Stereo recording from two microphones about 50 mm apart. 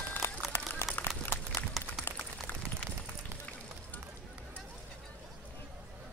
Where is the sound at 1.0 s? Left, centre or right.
Left.